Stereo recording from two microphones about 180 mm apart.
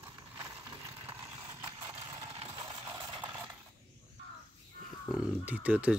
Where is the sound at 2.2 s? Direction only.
30° right (ahead or behind).